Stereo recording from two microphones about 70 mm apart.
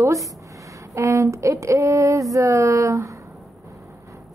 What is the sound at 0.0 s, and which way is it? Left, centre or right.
Speech, right.